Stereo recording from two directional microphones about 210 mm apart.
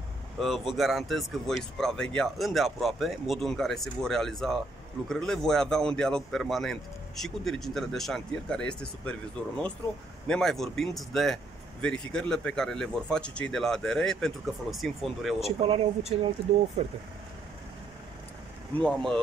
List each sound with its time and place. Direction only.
0.4 s speech: centre (ahead or behind)
10.2 s speech: 5° left (ahead or behind)
15.4 s speech: 30° right (ahead or behind)